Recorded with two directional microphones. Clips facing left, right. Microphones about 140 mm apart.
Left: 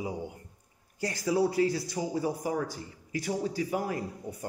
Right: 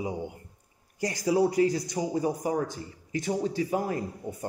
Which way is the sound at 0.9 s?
15° right (ahead or behind).